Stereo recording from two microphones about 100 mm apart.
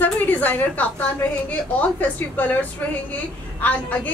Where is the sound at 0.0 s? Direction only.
20° left (ahead or behind).